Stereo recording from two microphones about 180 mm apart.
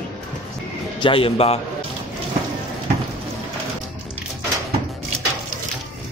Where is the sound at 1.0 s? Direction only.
30° left (ahead or behind).